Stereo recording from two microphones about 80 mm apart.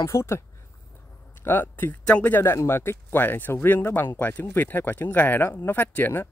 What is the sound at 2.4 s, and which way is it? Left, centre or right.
Speech, left.